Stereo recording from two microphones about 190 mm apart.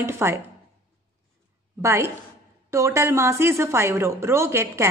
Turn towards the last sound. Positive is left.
turn(degrees=-15)  # may be behind; listen again after turning